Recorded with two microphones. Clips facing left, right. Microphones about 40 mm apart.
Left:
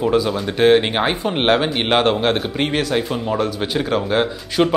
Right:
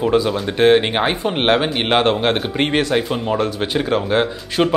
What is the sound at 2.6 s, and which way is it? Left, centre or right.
Speech, centre.